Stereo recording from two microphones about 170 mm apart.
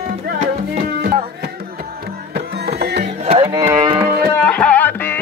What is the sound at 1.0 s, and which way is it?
Music, 65° right (ahead or behind).